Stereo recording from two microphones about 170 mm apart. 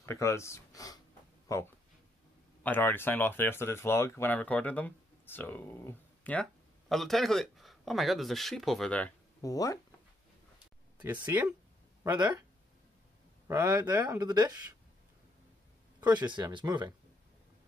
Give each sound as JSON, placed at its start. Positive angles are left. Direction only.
{"t": 0.0, "sound": "speech", "side_deg": 15}
{"t": 9.4, "sound": "speech", "side_deg": 20}
{"t": 12.2, "sound": "speech", "side_deg": -25}
{"t": 13.5, "sound": "speech", "side_deg": -25}
{"t": 16.0, "sound": "speech", "side_deg": -25}